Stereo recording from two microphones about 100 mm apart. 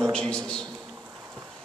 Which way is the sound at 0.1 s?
10° left (ahead or behind).